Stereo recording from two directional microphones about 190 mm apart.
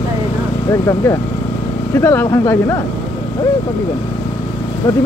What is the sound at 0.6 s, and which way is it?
Speech, 15° left (ahead or behind).